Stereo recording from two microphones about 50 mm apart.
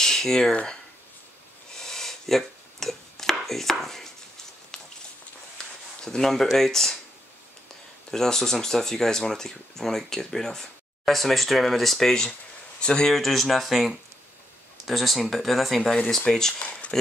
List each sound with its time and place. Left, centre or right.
0.0 s speech: centre
1.7 s chopping: centre
5.6 s a sound: centre
6.0 s speech: centre
8.1 s speech: centre
12.8 s speech: centre
13.1 s speech: centre
16.9 s a sound: centre